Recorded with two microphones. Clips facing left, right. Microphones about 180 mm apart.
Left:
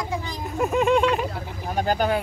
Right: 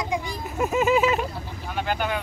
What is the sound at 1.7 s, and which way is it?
Vehicle, 40° left (ahead or behind).